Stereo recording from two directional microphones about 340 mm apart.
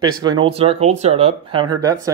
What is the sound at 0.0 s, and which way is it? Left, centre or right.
Speech, centre.